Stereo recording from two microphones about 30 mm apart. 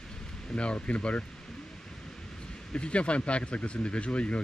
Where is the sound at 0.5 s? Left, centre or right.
Left.